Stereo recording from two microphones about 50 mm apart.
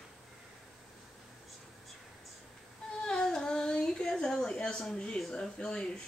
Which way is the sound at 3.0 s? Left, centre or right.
Centre.